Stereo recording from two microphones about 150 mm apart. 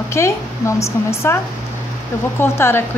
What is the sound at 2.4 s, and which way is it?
Speech, 15° left (ahead or behind).